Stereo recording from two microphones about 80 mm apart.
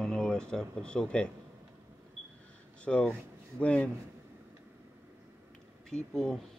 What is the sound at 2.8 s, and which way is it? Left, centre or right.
Speech, centre.